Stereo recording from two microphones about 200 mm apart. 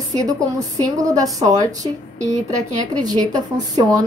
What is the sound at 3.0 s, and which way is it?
A woman's voice, 20° right (ahead or behind).